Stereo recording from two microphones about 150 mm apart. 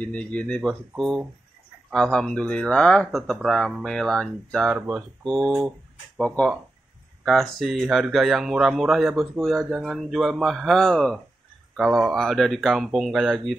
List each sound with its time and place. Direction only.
0.0 s speech: 10° left (ahead or behind)
4.7 s speech: 10° right (ahead or behind)
5.4 s speech: 25° right (ahead or behind)
6.1 s speech: 5° left (ahead or behind)